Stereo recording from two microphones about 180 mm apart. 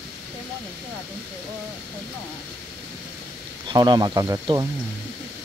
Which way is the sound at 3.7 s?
25° right (ahead or behind).